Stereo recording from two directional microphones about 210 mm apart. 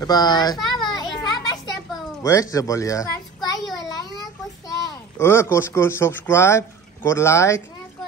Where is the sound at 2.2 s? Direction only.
15° left (ahead or behind).